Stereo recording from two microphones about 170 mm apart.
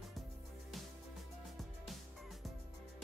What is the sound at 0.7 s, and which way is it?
Music, centre (ahead or behind).